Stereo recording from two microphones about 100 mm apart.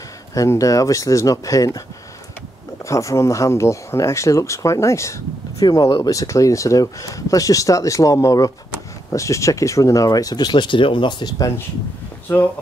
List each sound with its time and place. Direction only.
0.3 s speech: 35° left (ahead or behind)
2.9 s speech: 30° left (ahead or behind)
12.3 s speech: 25° left (ahead or behind)